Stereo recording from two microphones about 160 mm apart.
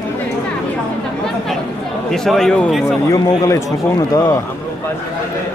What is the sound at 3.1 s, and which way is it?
Speech, 20° left (ahead or behind).